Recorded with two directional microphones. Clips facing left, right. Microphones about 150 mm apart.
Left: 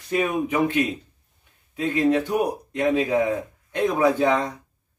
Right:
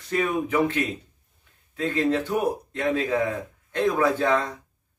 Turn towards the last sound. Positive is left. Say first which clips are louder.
# left 2 dB
turn(degrees=15)  # may be behind; listen again after turning